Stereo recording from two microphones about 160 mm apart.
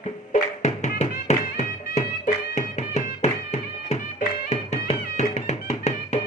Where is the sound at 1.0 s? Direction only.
45° left (ahead or behind).